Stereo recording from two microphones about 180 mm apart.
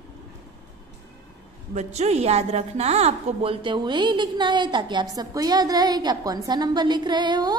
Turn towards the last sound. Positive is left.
turn(degrees=-20)  # may be behind; listen again after turning